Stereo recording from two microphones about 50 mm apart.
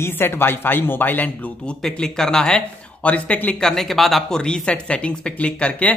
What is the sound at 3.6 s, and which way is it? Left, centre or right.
Speech, centre.